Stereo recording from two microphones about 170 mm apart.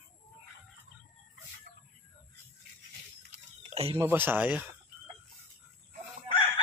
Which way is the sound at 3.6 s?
35° right (ahead or behind).